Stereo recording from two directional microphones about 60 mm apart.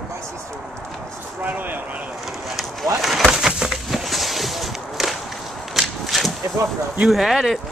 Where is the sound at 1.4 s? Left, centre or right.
Right.